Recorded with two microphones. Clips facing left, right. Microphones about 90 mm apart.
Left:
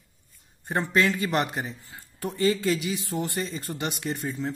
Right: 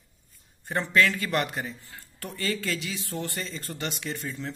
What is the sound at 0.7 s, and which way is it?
Speech, 20° left (ahead or behind).